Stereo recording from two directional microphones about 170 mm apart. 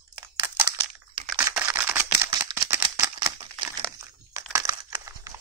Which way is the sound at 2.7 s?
15° right (ahead or behind).